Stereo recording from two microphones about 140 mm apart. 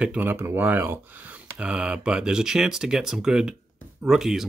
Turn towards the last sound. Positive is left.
turn(degrees=-5)  # may be behind; listen again after turning